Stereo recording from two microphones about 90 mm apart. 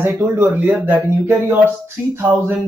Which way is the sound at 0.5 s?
20° right (ahead or behind).